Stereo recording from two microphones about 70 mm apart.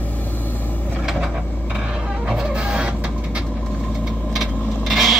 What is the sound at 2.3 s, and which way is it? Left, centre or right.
Vehicle, centre.